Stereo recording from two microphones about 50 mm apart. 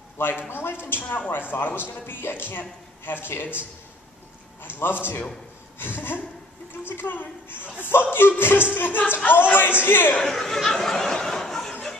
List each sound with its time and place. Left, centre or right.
0.5 s speech: left
4.6 s a woman's voice: left
10.2 s a sound: centre